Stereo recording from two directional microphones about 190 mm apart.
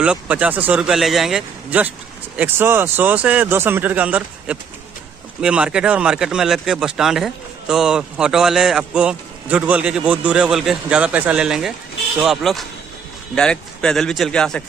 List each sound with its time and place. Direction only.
0.0 s speech: 5° right (ahead or behind)